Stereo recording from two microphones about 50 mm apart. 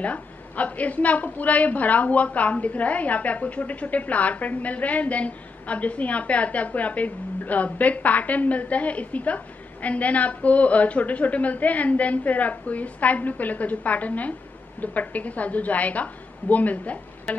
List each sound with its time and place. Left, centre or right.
0.0 s a woman's voice: left